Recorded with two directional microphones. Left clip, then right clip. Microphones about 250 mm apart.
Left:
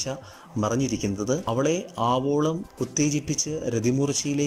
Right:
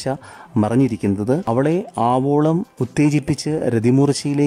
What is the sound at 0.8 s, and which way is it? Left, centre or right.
Speech, right.